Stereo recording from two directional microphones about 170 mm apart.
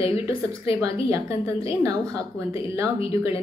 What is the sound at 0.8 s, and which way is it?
A woman's voice, 15° right (ahead or behind).